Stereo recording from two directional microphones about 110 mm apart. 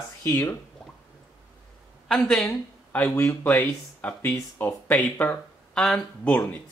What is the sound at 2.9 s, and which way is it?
Speech, 15° left (ahead or behind).